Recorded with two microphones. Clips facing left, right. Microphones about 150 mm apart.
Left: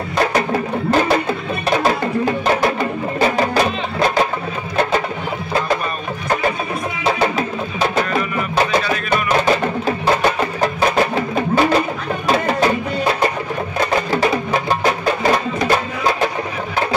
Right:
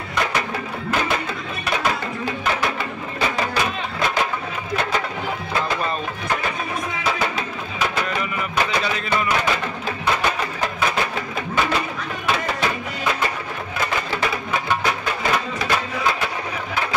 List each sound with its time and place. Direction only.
0.1 s music: 35° left (ahead or behind)
7.8 s music: 35° left (ahead or behind)
9.8 s music: 35° left (ahead or behind)